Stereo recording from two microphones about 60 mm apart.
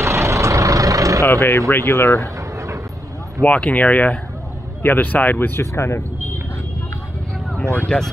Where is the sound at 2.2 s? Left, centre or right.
Right.